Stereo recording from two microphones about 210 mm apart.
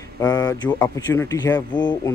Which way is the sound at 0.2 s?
15° left (ahead or behind).